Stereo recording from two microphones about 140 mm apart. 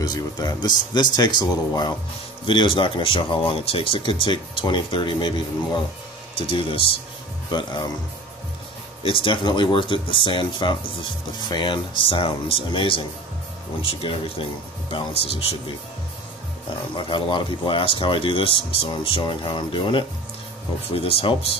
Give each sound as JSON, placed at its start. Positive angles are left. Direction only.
{"t": 0.0, "sound": "speech", "side_deg": 30}
{"t": 9.0, "sound": "speech", "side_deg": 40}
{"t": 16.9, "sound": "speech", "side_deg": 35}